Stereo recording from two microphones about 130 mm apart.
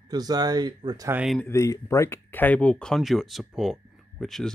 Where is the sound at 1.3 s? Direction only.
20° left (ahead or behind).